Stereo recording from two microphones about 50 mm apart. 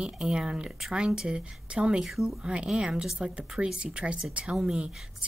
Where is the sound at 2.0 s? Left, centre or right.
Centre.